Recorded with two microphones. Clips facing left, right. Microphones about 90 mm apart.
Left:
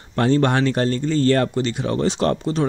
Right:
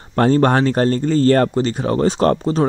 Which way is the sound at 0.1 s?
40° right (ahead or behind).